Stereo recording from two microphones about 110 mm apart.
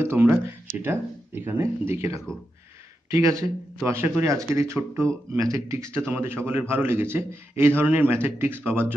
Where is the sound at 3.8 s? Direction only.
20° right (ahead or behind).